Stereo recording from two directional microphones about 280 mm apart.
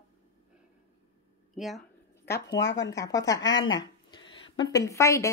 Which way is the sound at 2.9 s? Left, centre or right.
Centre.